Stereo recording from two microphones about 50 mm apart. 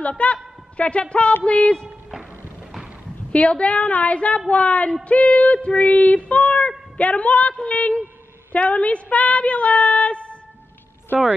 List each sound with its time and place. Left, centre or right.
0.2 s a woman's voice: left
3.3 s speech: left